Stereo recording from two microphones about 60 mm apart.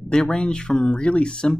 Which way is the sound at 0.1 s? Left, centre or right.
Centre.